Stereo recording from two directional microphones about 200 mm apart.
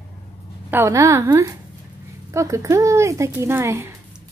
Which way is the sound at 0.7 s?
15° right (ahead or behind).